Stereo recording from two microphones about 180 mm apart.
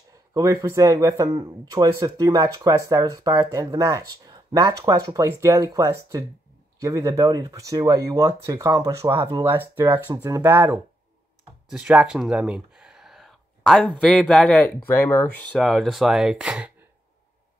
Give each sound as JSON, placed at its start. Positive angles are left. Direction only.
{"t": 0.3, "sound": "speech", "side_deg": -15}
{"t": 15.5, "sound": "speech", "side_deg": 0}